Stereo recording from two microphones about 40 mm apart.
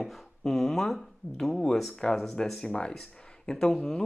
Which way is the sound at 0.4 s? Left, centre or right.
Centre.